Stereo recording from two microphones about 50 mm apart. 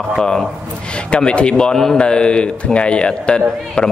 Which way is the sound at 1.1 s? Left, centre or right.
Left.